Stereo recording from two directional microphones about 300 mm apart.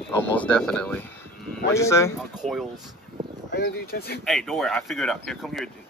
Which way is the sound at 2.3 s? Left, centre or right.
Centre.